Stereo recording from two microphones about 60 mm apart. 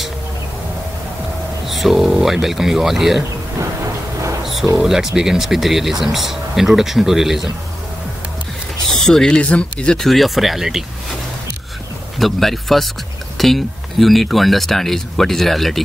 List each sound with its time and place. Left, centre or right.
1.7 s speech: centre
3.5 s a sound: right
4.7 s speech: centre
9.0 s speech: centre
9.9 s speech: centre
12.2 s speech: centre